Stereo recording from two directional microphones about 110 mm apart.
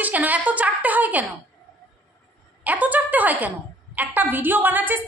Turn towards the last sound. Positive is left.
turn(degrees=-15)  # may be behind; listen again after turning